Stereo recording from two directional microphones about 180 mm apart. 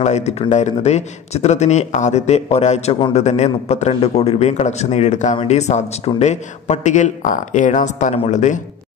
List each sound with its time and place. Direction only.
0.0 s speech: 40° left (ahead or behind)